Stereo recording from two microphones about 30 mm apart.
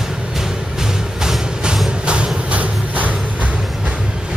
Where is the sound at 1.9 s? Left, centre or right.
Right.